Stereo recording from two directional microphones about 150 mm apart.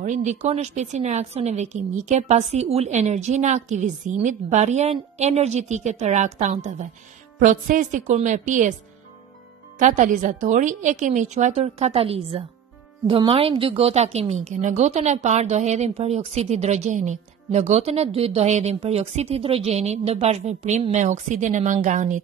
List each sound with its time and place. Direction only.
0.0 s a woman's voice: 55° right (ahead or behind)
9.8 s speech: 55° right (ahead or behind)